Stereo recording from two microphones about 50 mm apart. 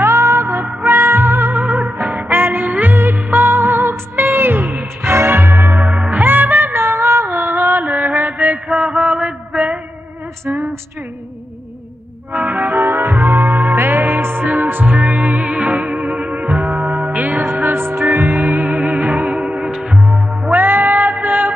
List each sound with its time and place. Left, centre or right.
0.0 s music: right
0.8 s music: right
1.6 s music: right
2.7 s music of bollywood: right
5.9 s music: right
6.7 s music: right
7.3 s music: right
7.8 s music: right
8.6 s a sound: right
12.3 s music: right
12.8 s music: right
17.6 s music: right